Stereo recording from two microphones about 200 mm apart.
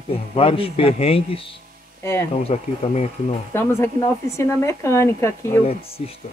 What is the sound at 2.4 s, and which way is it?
Speech, 30° left (ahead or behind).